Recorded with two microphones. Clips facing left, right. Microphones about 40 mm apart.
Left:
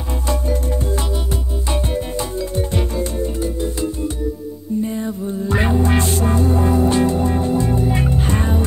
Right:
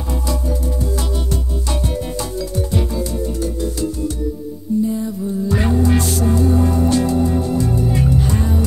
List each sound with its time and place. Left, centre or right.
1.3 s music: left
4.8 s music: left